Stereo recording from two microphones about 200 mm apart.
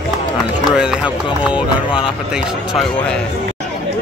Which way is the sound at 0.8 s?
5° right (ahead or behind).